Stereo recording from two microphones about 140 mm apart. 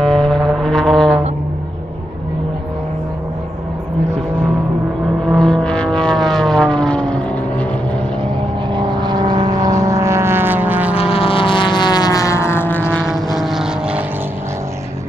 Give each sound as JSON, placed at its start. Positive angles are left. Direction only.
{"t": 0.0, "sound": "vehicle", "side_deg": 5}
{"t": 5.2, "sound": "vehicle", "side_deg": 5}
{"t": 8.7, "sound": "vehicle", "side_deg": -30}
{"t": 11.0, "sound": "vehicle", "side_deg": 45}
{"t": 13.0, "sound": "vehicle", "side_deg": 0}